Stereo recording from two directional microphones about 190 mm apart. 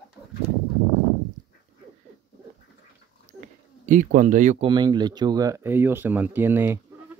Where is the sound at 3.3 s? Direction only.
40° right (ahead or behind).